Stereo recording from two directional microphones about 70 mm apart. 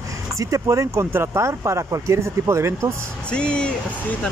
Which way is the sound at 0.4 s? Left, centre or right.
Right.